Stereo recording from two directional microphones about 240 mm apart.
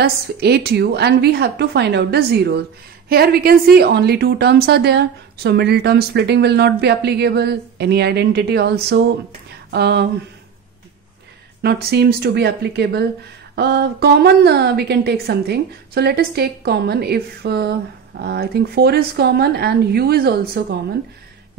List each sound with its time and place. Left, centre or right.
0.0 s a woman's voice: right
11.6 s a woman's voice: right